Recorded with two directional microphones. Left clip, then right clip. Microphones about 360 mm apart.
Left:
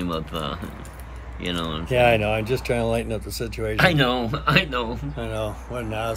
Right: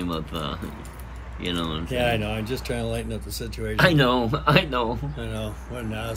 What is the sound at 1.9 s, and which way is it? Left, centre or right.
Speech, centre.